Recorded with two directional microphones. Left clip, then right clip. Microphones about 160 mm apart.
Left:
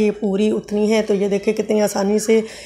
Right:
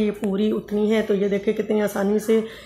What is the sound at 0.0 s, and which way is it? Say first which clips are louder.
Speech: left 5 dB; 10° left (ahead or behind).